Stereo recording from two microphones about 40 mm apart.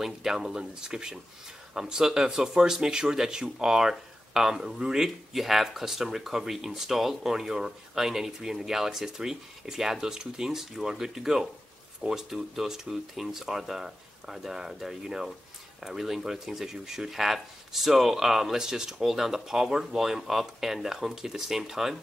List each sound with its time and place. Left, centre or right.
0.0 s speech: centre